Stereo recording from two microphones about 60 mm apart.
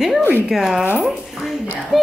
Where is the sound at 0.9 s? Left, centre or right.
Centre.